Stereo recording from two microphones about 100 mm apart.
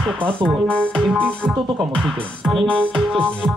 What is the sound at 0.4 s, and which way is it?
Speech, 55° right (ahead or behind).